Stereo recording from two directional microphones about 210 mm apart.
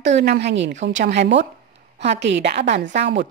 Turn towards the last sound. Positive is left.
turn(degrees=-55)  # may be behind; listen again after turning